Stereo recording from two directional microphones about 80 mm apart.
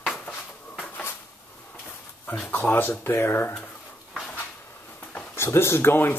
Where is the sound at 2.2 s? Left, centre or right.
Left.